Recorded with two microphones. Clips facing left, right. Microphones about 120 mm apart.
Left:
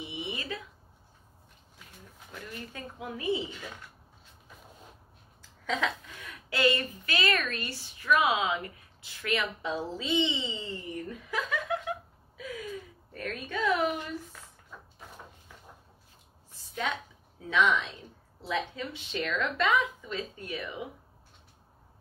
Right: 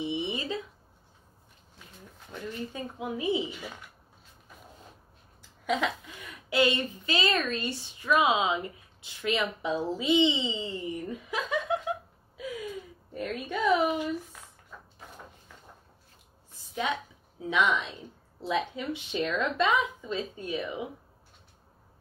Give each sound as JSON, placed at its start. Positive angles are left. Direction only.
{"t": 0.0, "sound": "a sound", "side_deg": -25}
{"t": 2.7, "sound": "speech", "side_deg": -20}
{"t": 5.7, "sound": "a woman's voice", "side_deg": -15}
{"t": 13.1, "sound": "speech", "side_deg": -15}
{"t": 16.7, "sound": "a sound", "side_deg": -15}
{"t": 18.4, "sound": "a woman's voice", "side_deg": -20}